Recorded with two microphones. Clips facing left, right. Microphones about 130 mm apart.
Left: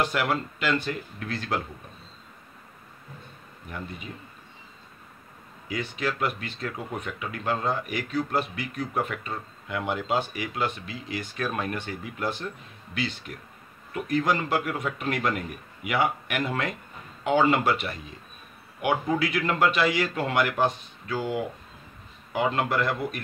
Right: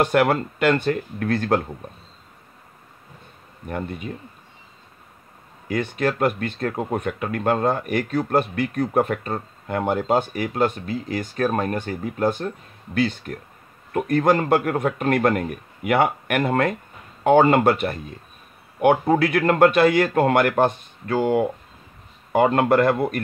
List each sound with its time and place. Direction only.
0.0 s speech: 55° right (ahead or behind)
3.6 s speech: 50° right (ahead or behind)
5.7 s speech: 50° right (ahead or behind)